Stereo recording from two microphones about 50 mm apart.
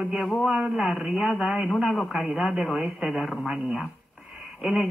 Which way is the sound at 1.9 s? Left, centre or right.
Centre.